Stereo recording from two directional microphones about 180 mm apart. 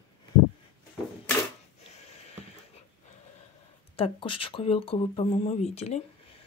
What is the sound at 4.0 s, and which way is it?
Speech, 30° left (ahead or behind).